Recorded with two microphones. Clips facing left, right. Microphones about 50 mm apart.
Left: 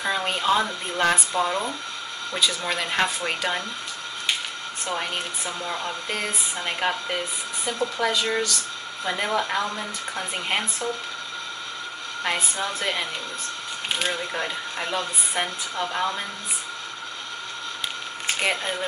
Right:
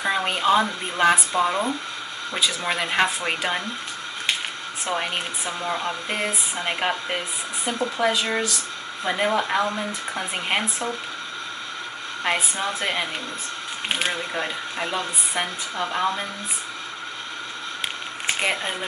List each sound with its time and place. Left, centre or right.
0.0 s speech: centre
4.8 s speech: centre
12.2 s speech: centre
18.2 s a sound: centre